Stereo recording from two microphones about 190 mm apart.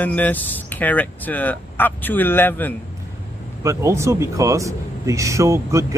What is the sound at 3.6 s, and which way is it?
Speech, 15° right (ahead or behind).